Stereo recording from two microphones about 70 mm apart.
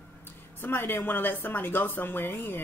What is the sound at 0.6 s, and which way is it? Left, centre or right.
A woman's voice, left.